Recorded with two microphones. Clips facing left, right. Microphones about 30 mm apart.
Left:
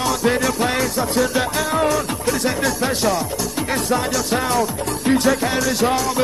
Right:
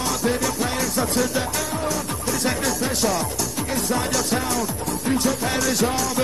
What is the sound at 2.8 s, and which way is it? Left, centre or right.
Music, left.